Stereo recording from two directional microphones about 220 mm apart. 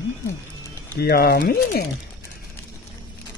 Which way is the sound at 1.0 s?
45° left (ahead or behind).